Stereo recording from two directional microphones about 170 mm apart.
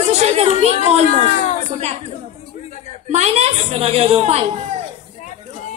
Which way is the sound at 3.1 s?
40° right (ahead or behind).